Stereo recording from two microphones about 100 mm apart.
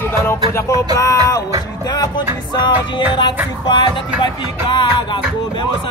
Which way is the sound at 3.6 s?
50° left (ahead or behind).